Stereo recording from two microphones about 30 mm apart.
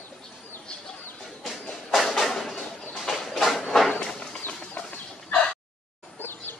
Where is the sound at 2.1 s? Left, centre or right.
Centre.